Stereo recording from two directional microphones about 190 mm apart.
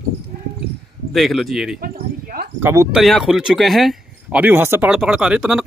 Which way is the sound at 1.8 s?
50° right (ahead or behind).